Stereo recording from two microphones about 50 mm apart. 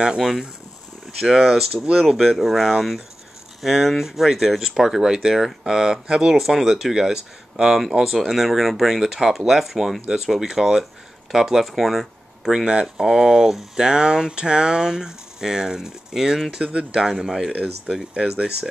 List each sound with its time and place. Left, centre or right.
0.2 s speech: centre
16.6 s speech: centre
17.1 s speech: centre
17.5 s speech: right